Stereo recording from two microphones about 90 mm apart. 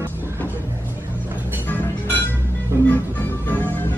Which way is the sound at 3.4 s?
20° left (ahead or behind).